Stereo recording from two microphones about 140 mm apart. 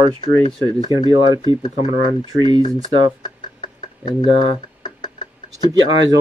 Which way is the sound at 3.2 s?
30° left (ahead or behind).